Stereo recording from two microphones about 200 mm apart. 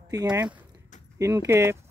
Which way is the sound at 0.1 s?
20° right (ahead or behind).